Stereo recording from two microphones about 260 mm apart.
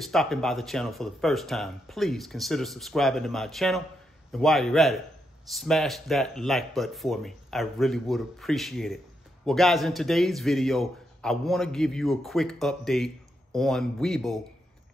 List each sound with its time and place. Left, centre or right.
0.0 s a man's voice: centre